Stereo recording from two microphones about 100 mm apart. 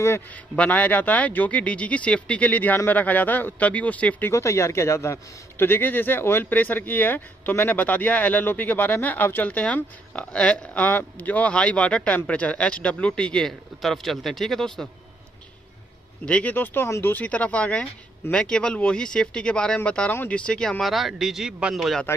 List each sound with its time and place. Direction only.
0.3 s a man's voice: 15° left (ahead or behind)
4.3 s a man's voice: 30° left (ahead or behind); by 14.9 s 5° left (ahead or behind)
16.3 s a man's voice: 15° left (ahead or behind); by 21.7 s 10° right (ahead or behind)
21.7 s speech: 5° left (ahead or behind)